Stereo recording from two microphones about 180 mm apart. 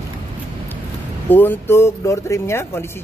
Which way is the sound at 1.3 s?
10° left (ahead or behind).